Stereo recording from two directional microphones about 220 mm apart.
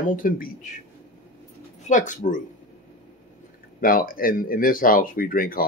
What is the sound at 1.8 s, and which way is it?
Speech, 35° left (ahead or behind).